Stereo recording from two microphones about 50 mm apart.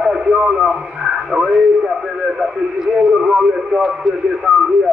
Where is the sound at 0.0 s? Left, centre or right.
Centre.